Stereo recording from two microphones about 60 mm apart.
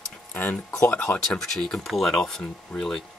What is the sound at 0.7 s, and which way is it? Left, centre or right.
Speech, left.